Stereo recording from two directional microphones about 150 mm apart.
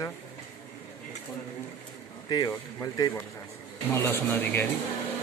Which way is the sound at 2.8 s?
25° left (ahead or behind).